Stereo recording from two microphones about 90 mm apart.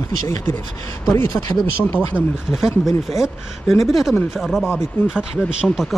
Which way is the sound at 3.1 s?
Centre (ahead or behind).